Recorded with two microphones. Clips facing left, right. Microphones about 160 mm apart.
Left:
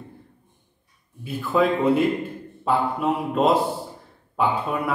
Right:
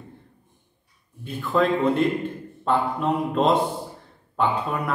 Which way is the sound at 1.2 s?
5° left (ahead or behind).